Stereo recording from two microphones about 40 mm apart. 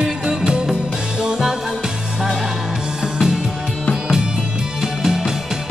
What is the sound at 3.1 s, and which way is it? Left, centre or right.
Music, centre.